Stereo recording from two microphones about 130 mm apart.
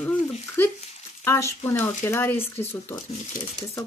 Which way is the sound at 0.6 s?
15° left (ahead or behind).